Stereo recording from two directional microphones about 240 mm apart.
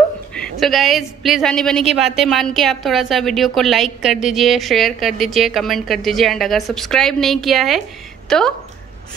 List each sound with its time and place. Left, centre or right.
0.3 s a woman's voice: centre